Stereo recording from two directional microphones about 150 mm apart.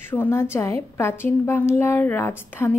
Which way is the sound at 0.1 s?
15° left (ahead or behind).